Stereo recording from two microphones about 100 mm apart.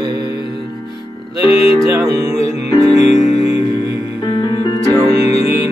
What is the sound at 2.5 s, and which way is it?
Music, 90° left.